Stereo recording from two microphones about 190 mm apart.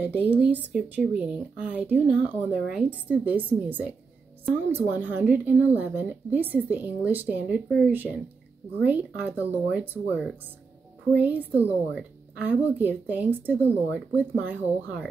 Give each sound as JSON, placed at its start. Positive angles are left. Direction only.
{"t": 0.0, "sound": "speech", "side_deg": -5}